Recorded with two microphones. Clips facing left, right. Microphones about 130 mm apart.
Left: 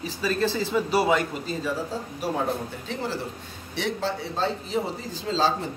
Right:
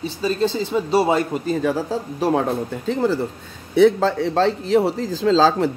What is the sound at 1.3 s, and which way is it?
Speech, 60° right (ahead or behind).